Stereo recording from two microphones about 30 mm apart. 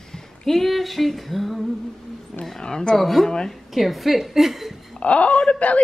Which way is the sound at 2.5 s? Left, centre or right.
Centre.